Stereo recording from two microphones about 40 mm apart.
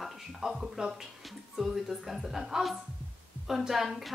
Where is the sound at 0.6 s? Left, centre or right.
Centre.